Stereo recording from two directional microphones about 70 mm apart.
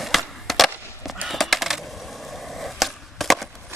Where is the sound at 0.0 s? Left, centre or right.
Centre.